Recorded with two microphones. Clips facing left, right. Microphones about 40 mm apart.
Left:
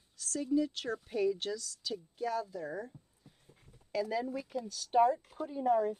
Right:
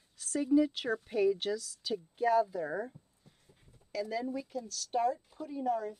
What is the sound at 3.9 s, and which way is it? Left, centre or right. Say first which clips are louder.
A woman's voice: left 1 dB; centre.